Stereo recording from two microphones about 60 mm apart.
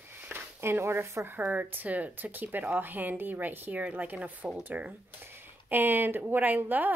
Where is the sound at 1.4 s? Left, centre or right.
Right.